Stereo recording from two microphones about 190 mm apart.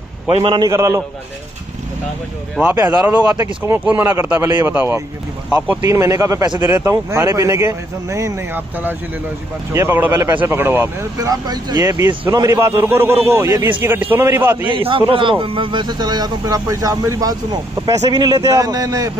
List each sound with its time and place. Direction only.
0.3 s speech: 25° right (ahead or behind)
2.5 s speech: 10° right (ahead or behind)
14.7 s speech: 25° right (ahead or behind)